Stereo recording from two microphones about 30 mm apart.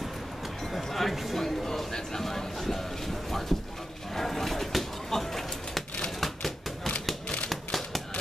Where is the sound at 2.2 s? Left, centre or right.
Centre.